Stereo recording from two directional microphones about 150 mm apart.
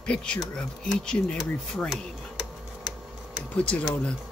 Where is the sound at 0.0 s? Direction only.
5° left (ahead or behind).